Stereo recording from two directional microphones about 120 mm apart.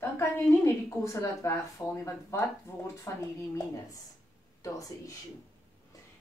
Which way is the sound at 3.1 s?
25° left (ahead or behind).